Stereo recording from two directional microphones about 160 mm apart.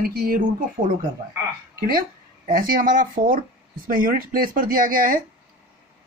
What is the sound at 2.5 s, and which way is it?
Speech, 60° right (ahead or behind).